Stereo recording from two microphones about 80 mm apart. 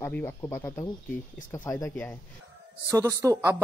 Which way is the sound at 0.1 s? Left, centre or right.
Left.